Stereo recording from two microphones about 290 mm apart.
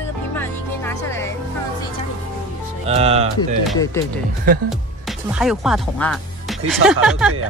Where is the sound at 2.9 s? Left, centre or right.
Right.